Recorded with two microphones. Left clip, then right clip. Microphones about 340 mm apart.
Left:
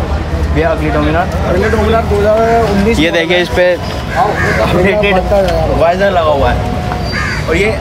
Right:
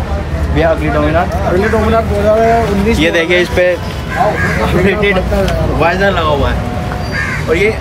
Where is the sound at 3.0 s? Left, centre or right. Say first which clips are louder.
Right 2 dB; left.